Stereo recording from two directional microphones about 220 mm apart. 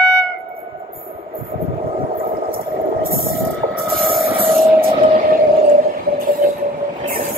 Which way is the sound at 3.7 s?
40° right (ahead or behind).